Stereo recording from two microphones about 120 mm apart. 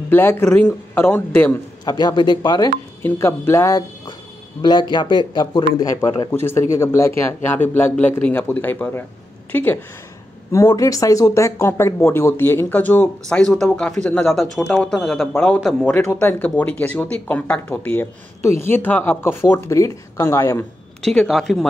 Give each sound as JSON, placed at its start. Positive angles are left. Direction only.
{"t": 0.1, "sound": "speech", "side_deg": 20}
{"t": 1.9, "sound": "a man's voice", "side_deg": 35}
{"t": 3.0, "sound": "speech", "side_deg": 20}
{"t": 4.6, "sound": "a man's voice", "side_deg": 40}
{"t": 6.3, "sound": "speech", "side_deg": 20}
{"t": 15.8, "sound": "speech", "side_deg": 20}
{"t": 21.0, "sound": "speech", "side_deg": 5}